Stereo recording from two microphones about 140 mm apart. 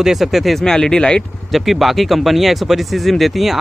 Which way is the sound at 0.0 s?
Centre (ahead or behind).